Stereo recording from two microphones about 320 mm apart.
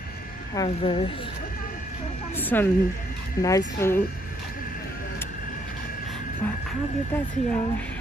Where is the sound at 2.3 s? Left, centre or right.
Centre.